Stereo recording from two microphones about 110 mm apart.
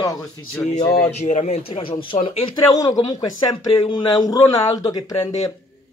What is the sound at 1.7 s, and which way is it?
Speech, 50° left (ahead or behind).